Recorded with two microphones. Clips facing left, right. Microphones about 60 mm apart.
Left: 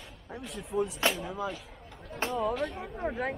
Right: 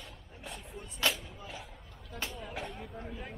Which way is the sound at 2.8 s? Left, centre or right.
Left.